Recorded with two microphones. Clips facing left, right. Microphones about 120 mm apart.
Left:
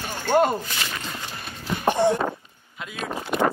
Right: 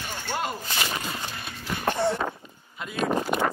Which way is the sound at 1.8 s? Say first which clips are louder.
Left 5 dB; 15° left (ahead or behind).